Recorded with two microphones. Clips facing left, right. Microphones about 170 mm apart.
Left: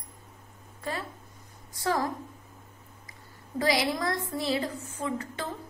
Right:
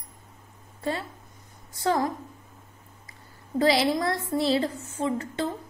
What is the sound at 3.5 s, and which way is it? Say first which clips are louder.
A woman's voice: right 5 dB; 30° right (ahead or behind).